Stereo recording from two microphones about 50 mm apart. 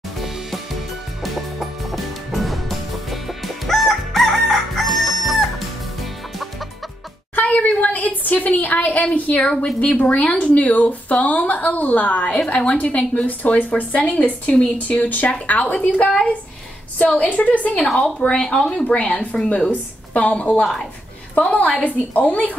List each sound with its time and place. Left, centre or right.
1.2 s music: centre
7.3 s a woman's voice: left
17.9 s speech: centre
18.7 s a woman's voice: left